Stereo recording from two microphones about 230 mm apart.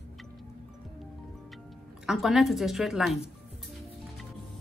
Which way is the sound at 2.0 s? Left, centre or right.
Centre.